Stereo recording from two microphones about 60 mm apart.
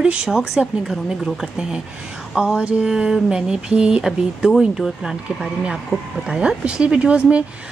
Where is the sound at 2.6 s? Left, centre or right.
Centre.